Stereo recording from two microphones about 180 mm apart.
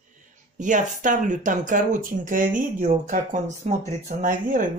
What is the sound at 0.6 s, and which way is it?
Speech, 45° right (ahead or behind).